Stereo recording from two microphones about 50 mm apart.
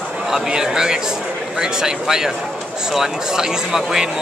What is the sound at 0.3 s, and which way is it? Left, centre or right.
Speech, centre.